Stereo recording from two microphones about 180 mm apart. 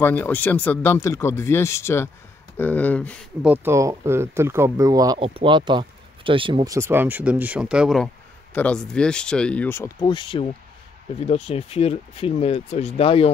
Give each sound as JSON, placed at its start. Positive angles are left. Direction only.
{"t": 0.0, "sound": "speech", "side_deg": 10}
{"t": 3.4, "sound": "speech", "side_deg": -10}